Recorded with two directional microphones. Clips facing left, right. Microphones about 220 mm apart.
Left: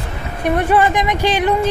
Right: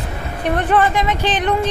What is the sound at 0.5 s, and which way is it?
Speech, 10° left (ahead or behind).